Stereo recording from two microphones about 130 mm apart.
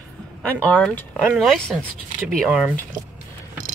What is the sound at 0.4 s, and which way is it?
Speech, 10° left (ahead or behind).